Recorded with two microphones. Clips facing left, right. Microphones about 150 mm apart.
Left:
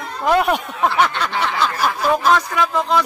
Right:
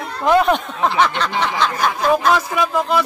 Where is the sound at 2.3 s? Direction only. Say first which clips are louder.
Even; 10° right (ahead or behind).